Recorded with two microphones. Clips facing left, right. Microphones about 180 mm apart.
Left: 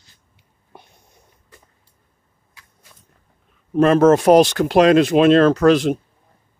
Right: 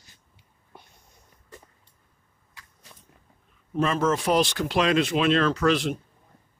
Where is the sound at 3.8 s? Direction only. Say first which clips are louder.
Left 11 dB; 60° left (ahead or behind); by 6.0 s 40° left (ahead or behind).